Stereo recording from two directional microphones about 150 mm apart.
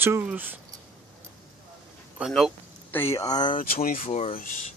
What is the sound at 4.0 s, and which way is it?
Speech, 45° left (ahead or behind).